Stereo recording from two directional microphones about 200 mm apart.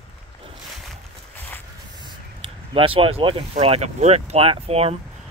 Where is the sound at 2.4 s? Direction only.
25° right (ahead or behind).